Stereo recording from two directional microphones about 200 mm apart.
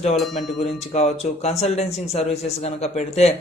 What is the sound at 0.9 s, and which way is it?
Speech, 30° left (ahead or behind).